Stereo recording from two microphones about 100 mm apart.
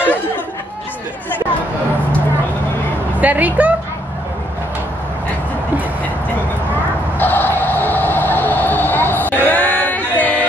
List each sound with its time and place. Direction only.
3.2 s a woman's voice: 15° right (ahead or behind)
7.2 s music: 20° left (ahead or behind)